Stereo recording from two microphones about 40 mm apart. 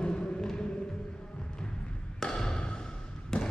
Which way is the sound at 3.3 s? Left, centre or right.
Left.